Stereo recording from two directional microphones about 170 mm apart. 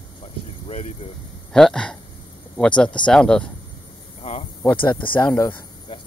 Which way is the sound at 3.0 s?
5° left (ahead or behind).